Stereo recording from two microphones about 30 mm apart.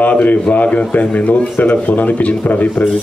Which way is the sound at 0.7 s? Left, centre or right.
Left.